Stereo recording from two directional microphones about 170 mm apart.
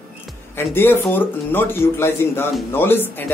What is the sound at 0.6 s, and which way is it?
Speech, 15° left (ahead or behind).